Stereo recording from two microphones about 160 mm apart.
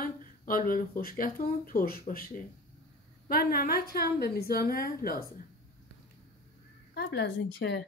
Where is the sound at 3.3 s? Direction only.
70° left (ahead or behind).